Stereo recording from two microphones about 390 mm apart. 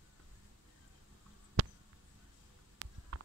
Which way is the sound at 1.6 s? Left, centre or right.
Right.